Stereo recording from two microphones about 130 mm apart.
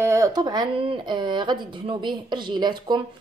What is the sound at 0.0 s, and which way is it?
Speech, 25° right (ahead or behind).